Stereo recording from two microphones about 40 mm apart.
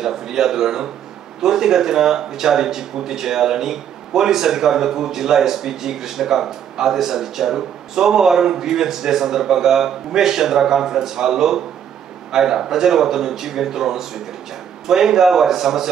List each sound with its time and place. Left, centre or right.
0.0 s a man's voice: centre